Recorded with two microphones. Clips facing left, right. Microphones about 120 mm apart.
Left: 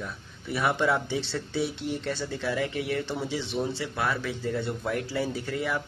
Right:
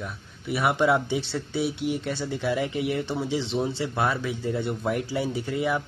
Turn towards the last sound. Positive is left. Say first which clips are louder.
# right 4 dB
turn(degrees=-20)  # may be behind; listen again after turning